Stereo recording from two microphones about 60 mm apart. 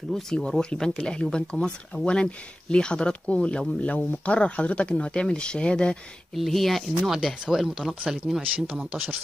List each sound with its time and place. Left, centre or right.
0.1 s speech: centre
6.3 s speech: centre
8.4 s speech: centre